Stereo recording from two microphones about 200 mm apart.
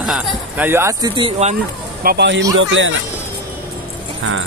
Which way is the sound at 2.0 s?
60° right (ahead or behind).